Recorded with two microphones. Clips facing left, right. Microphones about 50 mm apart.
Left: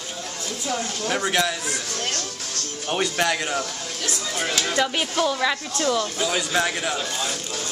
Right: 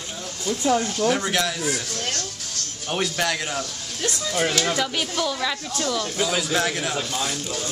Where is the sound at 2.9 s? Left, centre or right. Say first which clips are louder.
Left 1 dB; centre.